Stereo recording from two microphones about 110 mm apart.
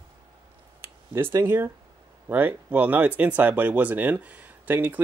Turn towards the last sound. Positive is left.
turn(degrees=-15)  # may be behind; listen again after turning